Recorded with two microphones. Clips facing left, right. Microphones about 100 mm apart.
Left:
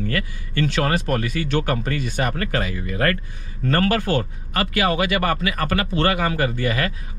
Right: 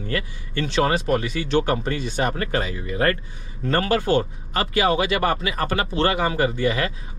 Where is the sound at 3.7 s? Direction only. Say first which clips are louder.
Even; 15° right (ahead or behind).